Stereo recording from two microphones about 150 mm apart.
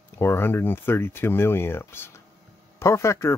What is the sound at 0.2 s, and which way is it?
Speech, 15° left (ahead or behind).